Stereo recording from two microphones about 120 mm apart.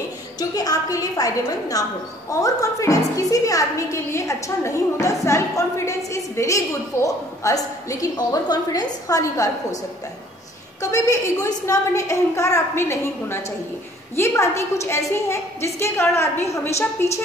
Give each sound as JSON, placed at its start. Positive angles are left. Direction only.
{"t": 0.4, "sound": "a woman's voice", "side_deg": 30}
{"t": 10.8, "sound": "a woman's voice", "side_deg": 25}